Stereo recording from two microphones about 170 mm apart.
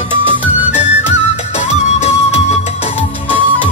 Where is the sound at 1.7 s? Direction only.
40° left (ahead or behind).